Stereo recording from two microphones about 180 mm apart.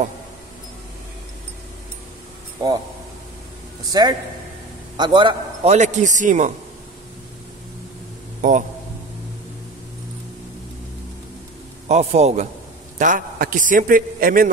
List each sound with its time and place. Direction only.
2.6 s speech: 20° right (ahead or behind)
3.9 s a man's voice: 25° right (ahead or behind)
5.7 s a man's voice: 40° right (ahead or behind)
8.4 s a man's voice: 45° right (ahead or behind)
11.9 s a man's voice: 35° right (ahead or behind)
13.0 s a man's voice: 45° right (ahead or behind)